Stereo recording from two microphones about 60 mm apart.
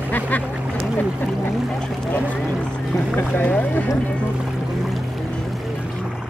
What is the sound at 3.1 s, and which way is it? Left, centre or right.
Boat, left.